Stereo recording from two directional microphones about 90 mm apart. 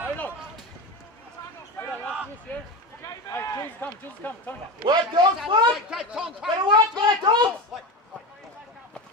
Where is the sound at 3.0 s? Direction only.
35° left (ahead or behind).